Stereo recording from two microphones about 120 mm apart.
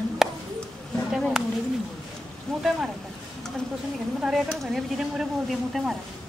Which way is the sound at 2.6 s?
5° right (ahead or behind).